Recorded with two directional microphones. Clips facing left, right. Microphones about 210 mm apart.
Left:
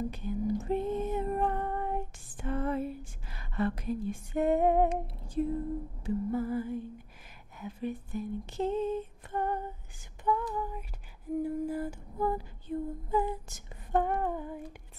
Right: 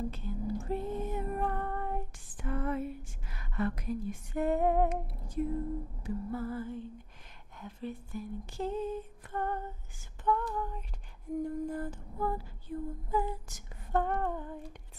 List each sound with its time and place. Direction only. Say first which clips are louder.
0.1 s a sound: left 5 dB; 15° left (ahead or behind)
6.0 s female singing: left 5 dB; 15° left (ahead or behind)
7.5 s speech: left 4 dB; 5° left (ahead or behind)
8.1 s female singing: left 4 dB; 20° left (ahead or behind)